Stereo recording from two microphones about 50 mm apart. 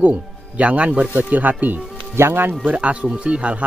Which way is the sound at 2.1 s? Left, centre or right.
Right.